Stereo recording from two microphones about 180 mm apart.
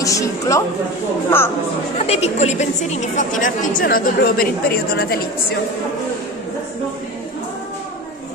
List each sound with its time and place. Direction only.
0.0 s a woman's voice: 20° left (ahead or behind)
2.0 s a woman's voice: 35° left (ahead or behind); by 5.6 s 60° left (ahead or behind)